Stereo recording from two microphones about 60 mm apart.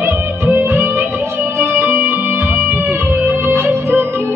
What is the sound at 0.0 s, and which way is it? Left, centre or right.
Music, right.